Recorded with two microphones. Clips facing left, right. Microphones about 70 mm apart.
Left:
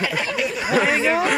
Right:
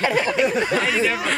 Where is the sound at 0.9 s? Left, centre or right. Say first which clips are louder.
Left 2 dB; left.